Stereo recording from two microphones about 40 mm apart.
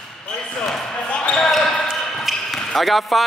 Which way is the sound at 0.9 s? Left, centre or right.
Left.